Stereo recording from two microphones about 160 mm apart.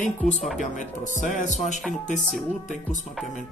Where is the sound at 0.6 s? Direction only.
50° left (ahead or behind).